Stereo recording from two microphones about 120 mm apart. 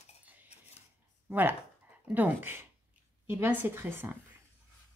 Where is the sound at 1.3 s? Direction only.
15° right (ahead or behind).